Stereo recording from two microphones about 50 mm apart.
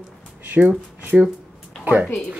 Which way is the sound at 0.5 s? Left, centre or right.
Right.